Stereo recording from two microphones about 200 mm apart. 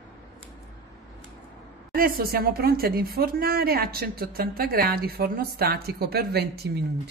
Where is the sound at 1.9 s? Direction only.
50° right (ahead or behind).